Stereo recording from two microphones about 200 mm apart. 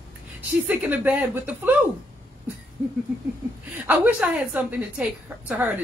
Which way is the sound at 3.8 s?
10° right (ahead or behind).